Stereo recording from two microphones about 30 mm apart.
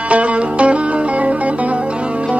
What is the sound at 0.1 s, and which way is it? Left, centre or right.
Music, right.